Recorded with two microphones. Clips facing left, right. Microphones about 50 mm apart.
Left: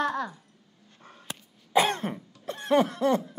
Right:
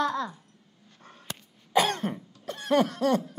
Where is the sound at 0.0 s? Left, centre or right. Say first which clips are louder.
Even; left.